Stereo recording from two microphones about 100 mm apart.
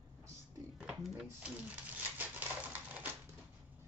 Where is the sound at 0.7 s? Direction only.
5° right (ahead or behind).